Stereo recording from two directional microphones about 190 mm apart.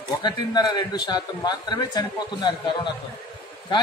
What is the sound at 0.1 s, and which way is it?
A man's voice, 20° left (ahead or behind).